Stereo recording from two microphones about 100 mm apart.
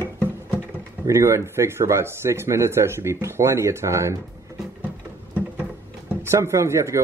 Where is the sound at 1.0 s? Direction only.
30° right (ahead or behind).